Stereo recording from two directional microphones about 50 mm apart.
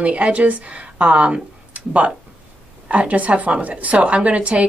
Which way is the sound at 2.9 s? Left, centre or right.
Right.